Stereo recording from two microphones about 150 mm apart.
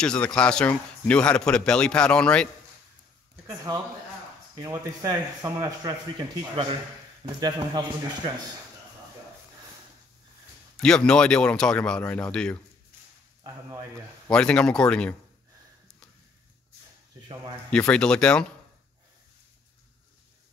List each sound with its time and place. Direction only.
0.0 s speech: 5° left (ahead or behind)
3.4 s speech: 25° right (ahead or behind)
7.3 s speech: 30° right (ahead or behind)
10.8 s speech: 5° left (ahead or behind)
13.4 s speech: 25° right (ahead or behind)
14.3 s speech: 5° left (ahead or behind)
17.6 s speech: 5° left (ahead or behind)